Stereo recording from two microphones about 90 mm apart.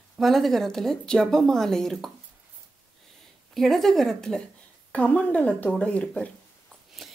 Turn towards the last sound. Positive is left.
turn(degrees=10)  # may be behind; listen again after turning